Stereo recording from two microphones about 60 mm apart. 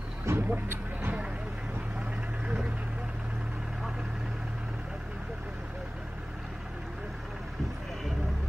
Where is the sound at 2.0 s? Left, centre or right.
Centre.